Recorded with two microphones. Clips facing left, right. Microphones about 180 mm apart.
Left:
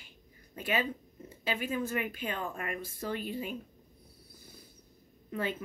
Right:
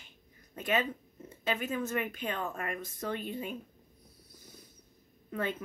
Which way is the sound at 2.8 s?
5° left (ahead or behind).